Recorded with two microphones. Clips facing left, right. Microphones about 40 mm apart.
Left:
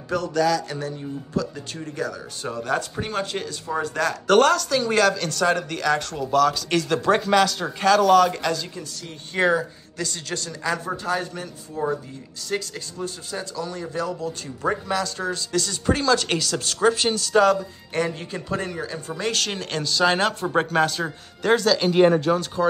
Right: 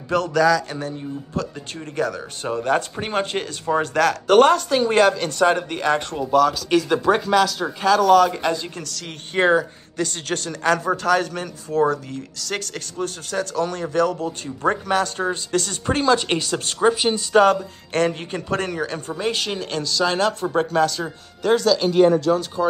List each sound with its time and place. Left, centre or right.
0.1 s speech: right
0.7 s speech: right
2.0 s speech: right
2.4 s speech: right
3.8 s speech: right
4.3 s speech: centre
6.3 s speech: centre
8.8 s speech: right
9.3 s speech: right
18.2 s speech: right
18.6 s speech: right
19.1 s speech: centre
19.7 s speech: centre
22.3 s speech: left